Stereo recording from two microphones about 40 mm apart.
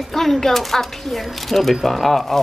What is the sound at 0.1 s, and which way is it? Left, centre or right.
Speech, centre.